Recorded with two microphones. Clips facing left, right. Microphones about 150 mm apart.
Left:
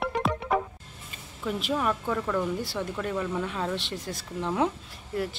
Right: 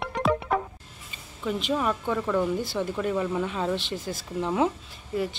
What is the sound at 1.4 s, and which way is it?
Speech, centre (ahead or behind).